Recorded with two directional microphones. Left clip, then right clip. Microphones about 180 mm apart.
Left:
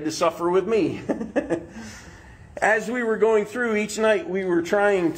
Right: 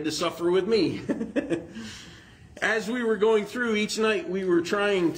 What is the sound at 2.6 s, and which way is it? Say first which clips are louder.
Speech: left 4 dB; 20° right (ahead or behind).